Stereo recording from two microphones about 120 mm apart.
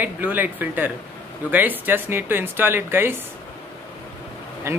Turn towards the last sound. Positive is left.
turn(degrees=-25)  # may be behind; listen again after turning